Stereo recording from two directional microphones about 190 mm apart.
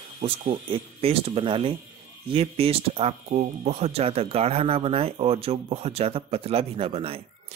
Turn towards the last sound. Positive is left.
turn(degrees=-30)  # may be behind; listen again after turning